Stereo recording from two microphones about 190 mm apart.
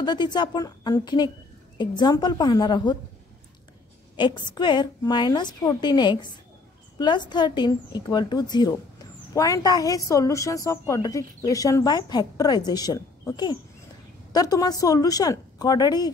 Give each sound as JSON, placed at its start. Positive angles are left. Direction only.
{"t": 0.0, "sound": "a woman's voice", "side_deg": 20}
{"t": 4.2, "sound": "a woman's voice", "side_deg": 25}